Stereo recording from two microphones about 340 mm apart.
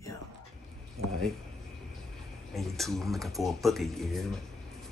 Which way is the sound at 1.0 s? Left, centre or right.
Right.